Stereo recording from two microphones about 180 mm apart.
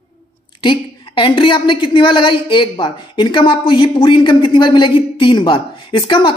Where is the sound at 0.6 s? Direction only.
30° left (ahead or behind).